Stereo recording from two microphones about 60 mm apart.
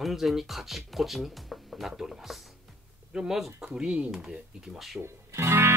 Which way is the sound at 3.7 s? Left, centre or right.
Centre.